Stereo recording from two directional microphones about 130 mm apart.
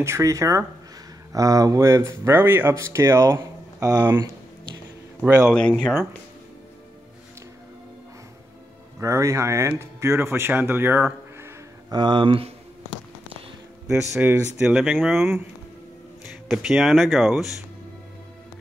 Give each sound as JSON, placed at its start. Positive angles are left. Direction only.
{"t": 0.0, "sound": "speech", "side_deg": -25}
{"t": 5.2, "sound": "a man's voice", "side_deg": -15}
{"t": 5.5, "sound": "speech", "side_deg": 10}
{"t": 9.0, "sound": "speech", "side_deg": -25}
{"t": 11.9, "sound": "speech", "side_deg": -35}
{"t": 13.8, "sound": "speech", "side_deg": -5}
{"t": 16.4, "sound": "speech", "side_deg": -5}